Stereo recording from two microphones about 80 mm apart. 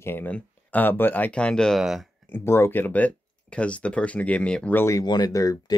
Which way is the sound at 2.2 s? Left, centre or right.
Left.